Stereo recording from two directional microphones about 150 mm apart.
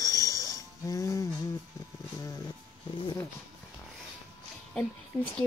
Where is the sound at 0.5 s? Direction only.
20° left (ahead or behind).